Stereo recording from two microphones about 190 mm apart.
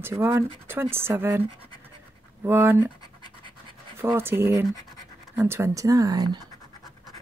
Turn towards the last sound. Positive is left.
turn(degrees=-20)  # may be behind; listen again after turning